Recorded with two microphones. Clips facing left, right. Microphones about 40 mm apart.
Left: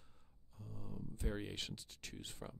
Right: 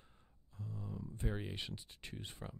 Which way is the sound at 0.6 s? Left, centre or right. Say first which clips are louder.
Right 4 dB; centre.